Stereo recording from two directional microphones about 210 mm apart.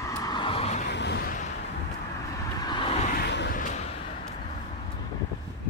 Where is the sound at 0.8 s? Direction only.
55° left (ahead or behind).